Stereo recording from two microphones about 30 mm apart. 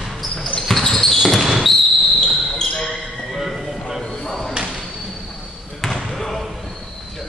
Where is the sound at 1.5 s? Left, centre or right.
Centre.